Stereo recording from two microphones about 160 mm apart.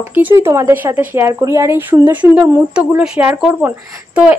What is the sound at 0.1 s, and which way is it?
Speech, 10° right (ahead or behind).